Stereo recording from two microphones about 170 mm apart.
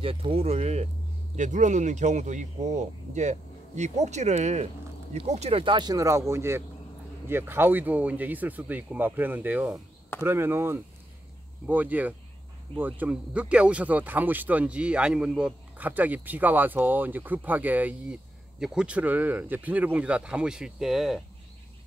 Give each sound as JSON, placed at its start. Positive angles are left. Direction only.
{"t": 0.0, "sound": "speech", "side_deg": -35}